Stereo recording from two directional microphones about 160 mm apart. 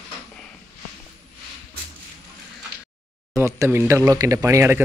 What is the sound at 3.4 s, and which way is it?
Speech, 15° right (ahead or behind).